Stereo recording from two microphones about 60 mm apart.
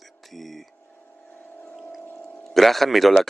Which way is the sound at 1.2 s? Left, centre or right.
Left.